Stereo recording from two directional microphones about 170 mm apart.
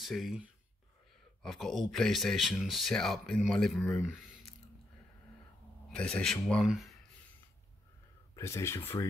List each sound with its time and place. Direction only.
0.0 s speech: centre (ahead or behind)
5.9 s speech: 5° left (ahead or behind)
8.4 s speech: 15° left (ahead or behind)